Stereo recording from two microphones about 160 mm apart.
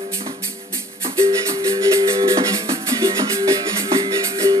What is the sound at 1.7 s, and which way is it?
Music, 35° right (ahead or behind).